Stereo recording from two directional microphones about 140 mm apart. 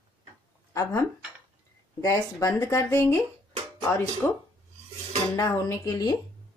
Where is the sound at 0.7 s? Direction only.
20° left (ahead or behind).